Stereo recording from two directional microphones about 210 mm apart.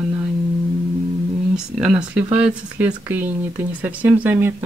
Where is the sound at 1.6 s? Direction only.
5° right (ahead or behind).